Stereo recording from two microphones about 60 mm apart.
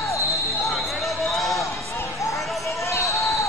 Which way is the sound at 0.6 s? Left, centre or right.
Centre.